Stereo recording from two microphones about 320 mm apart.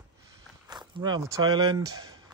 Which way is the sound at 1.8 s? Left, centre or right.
Right.